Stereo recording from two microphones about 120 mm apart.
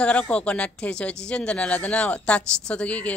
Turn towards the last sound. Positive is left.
turn(degrees=10)  # may be behind; listen again after turning